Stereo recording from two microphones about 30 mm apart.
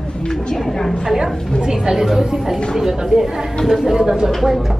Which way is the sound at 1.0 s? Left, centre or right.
Centre.